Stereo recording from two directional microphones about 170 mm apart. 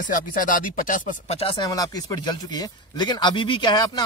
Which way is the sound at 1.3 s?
35° left (ahead or behind).